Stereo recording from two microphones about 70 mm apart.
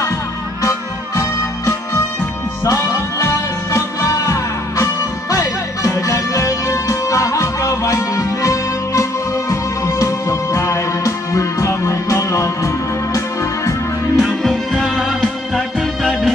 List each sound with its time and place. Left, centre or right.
0.6 s music: left
2.6 s music: left
14.1 s music: centre